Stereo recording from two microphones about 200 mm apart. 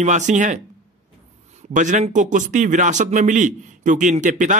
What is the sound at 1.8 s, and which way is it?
A man's voice, 35° right (ahead or behind).